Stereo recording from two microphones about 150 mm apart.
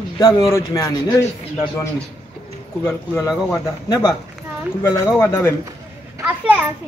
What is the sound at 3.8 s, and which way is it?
Speech, 20° left (ahead or behind).